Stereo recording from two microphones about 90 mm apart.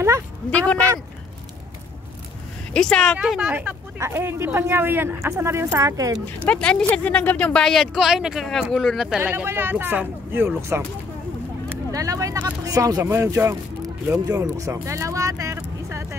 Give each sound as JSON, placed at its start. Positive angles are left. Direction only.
{"t": 0.5, "sound": "speech", "side_deg": 15}
{"t": 2.7, "sound": "speech", "side_deg": 10}
{"t": 3.2, "sound": "speech", "side_deg": -10}
{"t": 4.0, "sound": "speech", "side_deg": -25}
{"t": 6.2, "sound": "speech", "side_deg": 15}
{"t": 9.2, "sound": "speech", "side_deg": -25}
{"t": 11.9, "sound": "speech", "side_deg": -35}